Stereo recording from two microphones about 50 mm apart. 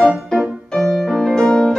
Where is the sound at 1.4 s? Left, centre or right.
Centre.